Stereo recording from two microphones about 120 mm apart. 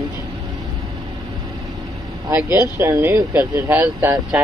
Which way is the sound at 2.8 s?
20° right (ahead or behind).